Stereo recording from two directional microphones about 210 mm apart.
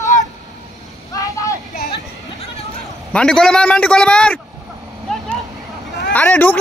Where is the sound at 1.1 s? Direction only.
15° left (ahead or behind).